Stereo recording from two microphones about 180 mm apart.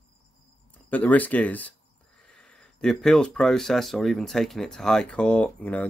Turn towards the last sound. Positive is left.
turn(degrees=5)  # may be behind; listen again after turning